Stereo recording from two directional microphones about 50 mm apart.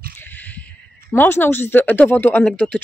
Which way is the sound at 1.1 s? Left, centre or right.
Left.